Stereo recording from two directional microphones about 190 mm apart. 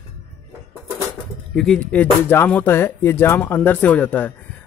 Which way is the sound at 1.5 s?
5° left (ahead or behind).